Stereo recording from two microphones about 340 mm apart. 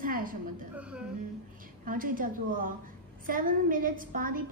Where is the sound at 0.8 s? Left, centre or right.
Centre.